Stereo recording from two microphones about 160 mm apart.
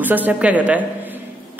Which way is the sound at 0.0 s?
10° right (ahead or behind).